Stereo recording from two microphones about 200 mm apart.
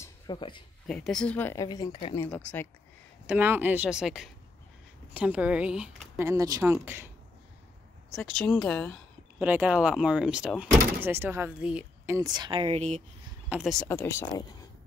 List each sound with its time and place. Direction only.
0.0 s a sound: 20° left (ahead or behind)
0.8 s speech: 5° left (ahead or behind); by 2.1 s 25° left (ahead or behind)
2.1 s speech: 10° left (ahead or behind)
3.3 s speech: 10° right (ahead or behind)
8.1 s speech: centre (ahead or behind)
9.4 s speech: 5° right (ahead or behind)
12.2 s speech: 20° right (ahead or behind)
13.5 s speech: centre (ahead or behind)
13.8 s speech: 10° left (ahead or behind)